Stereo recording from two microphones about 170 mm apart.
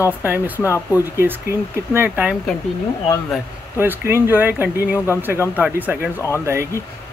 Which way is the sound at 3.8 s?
15° right (ahead or behind).